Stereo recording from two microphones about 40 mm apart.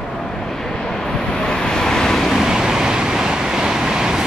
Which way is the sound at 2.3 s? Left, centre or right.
Centre.